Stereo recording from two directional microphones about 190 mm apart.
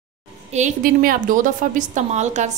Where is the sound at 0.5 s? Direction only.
45° right (ahead or behind).